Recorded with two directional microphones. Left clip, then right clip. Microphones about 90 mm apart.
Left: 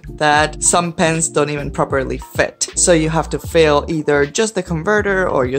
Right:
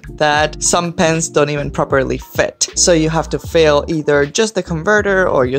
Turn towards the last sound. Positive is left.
turn(degrees=-55)  # may be behind; listen again after turning